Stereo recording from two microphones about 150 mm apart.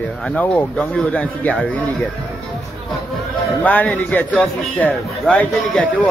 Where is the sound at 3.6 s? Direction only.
10° left (ahead or behind).